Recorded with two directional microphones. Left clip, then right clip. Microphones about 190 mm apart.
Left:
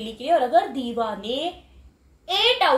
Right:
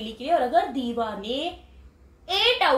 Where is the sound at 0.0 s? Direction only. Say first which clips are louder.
Left 2 dB; 15° left (ahead or behind).